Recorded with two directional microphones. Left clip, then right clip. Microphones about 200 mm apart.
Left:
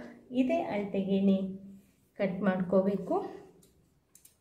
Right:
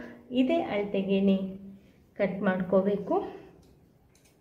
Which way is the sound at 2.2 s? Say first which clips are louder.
Right 3 dB; centre (ahead or behind).